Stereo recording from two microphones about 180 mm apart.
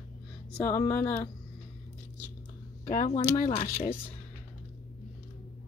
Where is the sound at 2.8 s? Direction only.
50° left (ahead or behind).